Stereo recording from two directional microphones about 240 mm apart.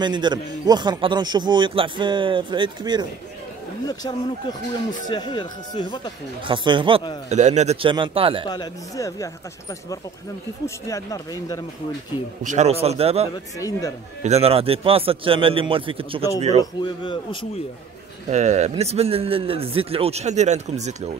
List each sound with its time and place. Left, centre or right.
0.0 s speech: centre
3.8 s speech: centre
6.4 s speech: centre
8.5 s speech: centre
12.4 s speech: right
13.6 s speech: centre
14.2 s speech: right
16.8 s a man's voice: left
18.3 s speech: right